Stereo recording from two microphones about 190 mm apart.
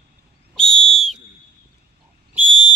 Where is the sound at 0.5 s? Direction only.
5° left (ahead or behind).